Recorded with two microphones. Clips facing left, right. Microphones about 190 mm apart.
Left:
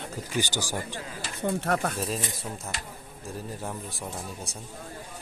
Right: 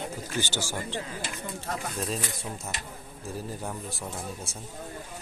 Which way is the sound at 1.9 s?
Centre (ahead or behind).